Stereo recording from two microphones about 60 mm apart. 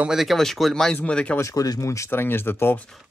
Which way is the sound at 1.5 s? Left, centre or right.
Left.